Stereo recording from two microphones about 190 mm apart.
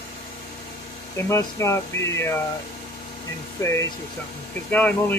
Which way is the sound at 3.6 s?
15° left (ahead or behind).